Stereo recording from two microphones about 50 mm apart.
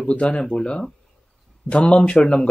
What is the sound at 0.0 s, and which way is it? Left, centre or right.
Speech, left.